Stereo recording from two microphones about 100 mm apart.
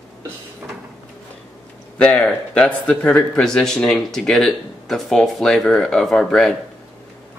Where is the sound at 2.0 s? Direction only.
10° left (ahead or behind).